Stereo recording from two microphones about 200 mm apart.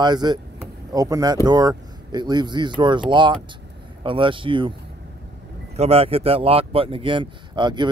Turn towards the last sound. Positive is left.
turn(degrees=-20)  # may be behind; listen again after turning